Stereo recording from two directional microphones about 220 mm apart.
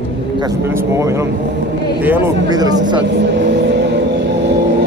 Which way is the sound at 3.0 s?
50° right (ahead or behind).